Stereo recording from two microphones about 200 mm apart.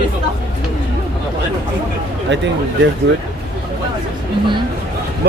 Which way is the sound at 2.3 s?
65° right (ahead or behind).